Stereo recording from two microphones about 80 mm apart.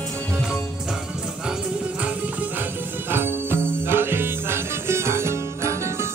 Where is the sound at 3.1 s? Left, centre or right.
Right.